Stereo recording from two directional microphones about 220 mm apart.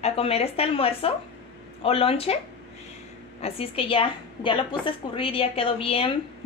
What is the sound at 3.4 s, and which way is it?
A woman's voice, 25° left (ahead or behind).